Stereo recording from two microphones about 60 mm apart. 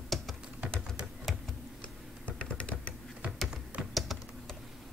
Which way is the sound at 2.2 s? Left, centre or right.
Left.